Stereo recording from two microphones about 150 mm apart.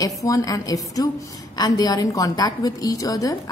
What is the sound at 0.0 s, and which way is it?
A woman's voice, 25° left (ahead or behind).